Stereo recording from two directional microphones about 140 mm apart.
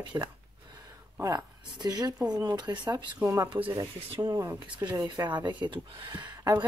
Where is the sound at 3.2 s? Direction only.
20° right (ahead or behind).